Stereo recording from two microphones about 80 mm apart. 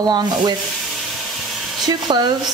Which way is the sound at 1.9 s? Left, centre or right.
Right.